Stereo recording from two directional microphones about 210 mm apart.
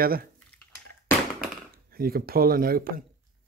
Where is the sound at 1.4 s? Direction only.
45° right (ahead or behind).